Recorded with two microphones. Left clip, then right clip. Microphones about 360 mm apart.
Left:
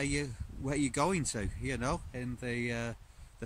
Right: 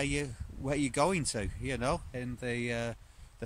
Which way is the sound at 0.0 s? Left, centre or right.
Centre.